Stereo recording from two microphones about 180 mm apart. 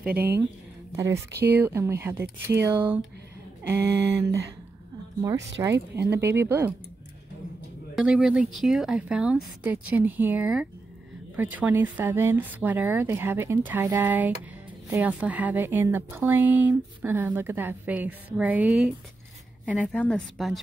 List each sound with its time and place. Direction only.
0.9 s speech: 15° right (ahead or behind)
5.6 s speech: 15° right (ahead or behind)
7.9 s speech: 5° right (ahead or behind)
19.7 s speech: 5° left (ahead or behind)